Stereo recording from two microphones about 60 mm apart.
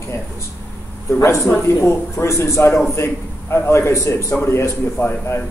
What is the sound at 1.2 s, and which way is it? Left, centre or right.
A man's voice, left.